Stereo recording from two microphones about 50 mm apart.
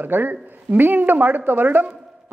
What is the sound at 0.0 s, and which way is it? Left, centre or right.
A woman's voice, right.